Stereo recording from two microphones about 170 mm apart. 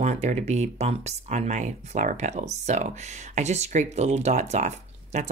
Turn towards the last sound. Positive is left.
turn(degrees=-40)  # may be behind; listen again after turning